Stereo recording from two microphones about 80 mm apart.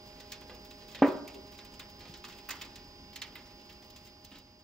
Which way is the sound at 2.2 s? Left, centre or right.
Centre.